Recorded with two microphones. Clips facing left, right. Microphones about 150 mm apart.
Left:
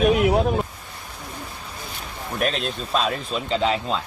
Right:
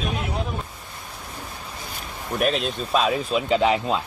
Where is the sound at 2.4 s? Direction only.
Centre (ahead or behind).